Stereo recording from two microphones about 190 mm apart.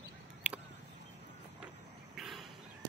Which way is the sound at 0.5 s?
10° right (ahead or behind).